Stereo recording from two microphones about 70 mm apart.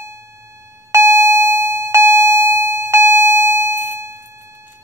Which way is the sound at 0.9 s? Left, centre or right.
Right.